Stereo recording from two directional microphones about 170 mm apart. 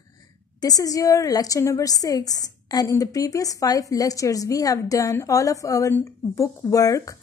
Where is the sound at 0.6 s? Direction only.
20° left (ahead or behind).